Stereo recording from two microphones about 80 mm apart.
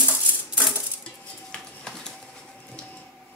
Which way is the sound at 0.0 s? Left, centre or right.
Centre.